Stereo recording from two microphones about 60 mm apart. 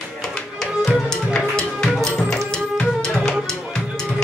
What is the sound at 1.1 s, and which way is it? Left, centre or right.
Music, centre.